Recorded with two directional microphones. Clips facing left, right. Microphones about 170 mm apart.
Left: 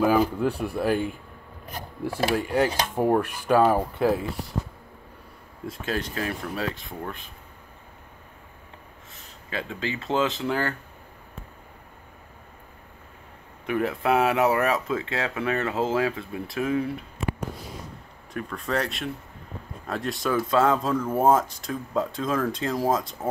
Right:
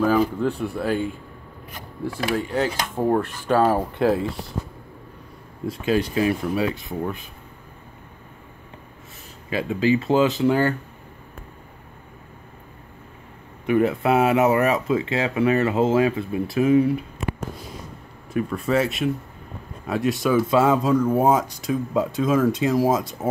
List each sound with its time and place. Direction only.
0.0 s speech: 10° left (ahead or behind)
2.3 s speech: 15° left (ahead or behind)
4.0 s speech: 20° right (ahead or behind)
5.7 s speech: 5° right (ahead or behind)
9.5 s speech: 10° right (ahead or behind)
13.7 s speech: centre (ahead or behind)
18.3 s speech: 5° right (ahead or behind)